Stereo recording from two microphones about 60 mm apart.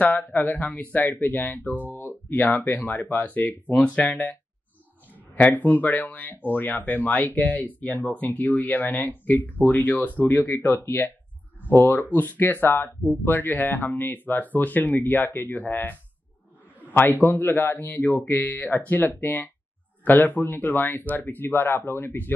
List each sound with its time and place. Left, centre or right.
0.0 s speech: left